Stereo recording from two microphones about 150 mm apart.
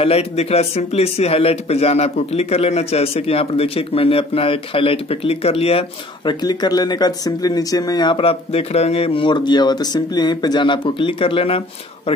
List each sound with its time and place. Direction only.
0.0 s speech: 45° left (ahead or behind)
6.4 s speech: 25° left (ahead or behind)